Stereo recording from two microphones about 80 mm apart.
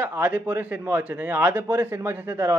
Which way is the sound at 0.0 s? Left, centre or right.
Right.